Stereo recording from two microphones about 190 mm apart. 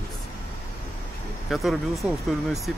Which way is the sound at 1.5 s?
Centre (ahead or behind).